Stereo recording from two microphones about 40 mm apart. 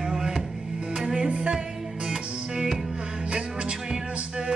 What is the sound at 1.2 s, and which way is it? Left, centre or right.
Music, right.